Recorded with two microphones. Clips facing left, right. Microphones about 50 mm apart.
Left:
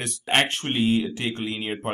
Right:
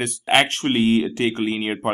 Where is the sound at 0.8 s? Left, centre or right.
Right.